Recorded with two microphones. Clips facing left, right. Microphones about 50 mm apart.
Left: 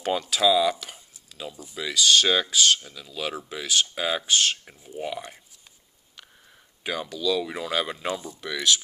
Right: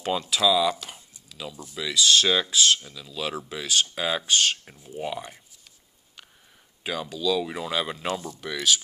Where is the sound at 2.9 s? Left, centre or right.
Centre.